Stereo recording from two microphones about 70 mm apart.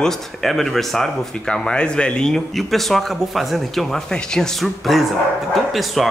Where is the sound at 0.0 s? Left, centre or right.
Centre.